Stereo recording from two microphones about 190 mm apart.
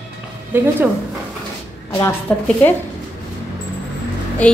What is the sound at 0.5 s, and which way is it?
Speech, 10° right (ahead or behind).